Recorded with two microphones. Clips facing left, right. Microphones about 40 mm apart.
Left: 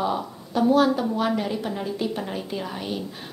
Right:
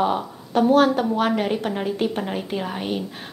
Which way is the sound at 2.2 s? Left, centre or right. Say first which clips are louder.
Right 4 dB; right.